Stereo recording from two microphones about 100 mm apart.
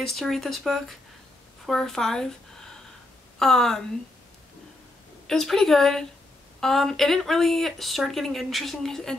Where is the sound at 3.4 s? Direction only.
5° left (ahead or behind).